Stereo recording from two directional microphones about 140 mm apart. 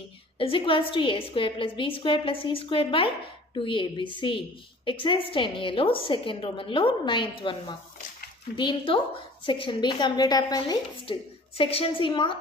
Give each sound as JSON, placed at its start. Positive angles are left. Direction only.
{"t": 0.4, "sound": "a woman's voice", "side_deg": 40}
{"t": 10.7, "sound": "a woman's voice", "side_deg": 40}